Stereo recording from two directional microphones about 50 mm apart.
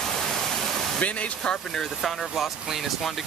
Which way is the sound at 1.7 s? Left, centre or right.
Centre.